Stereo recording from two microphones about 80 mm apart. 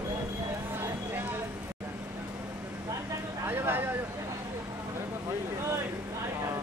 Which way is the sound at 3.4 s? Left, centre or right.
Right.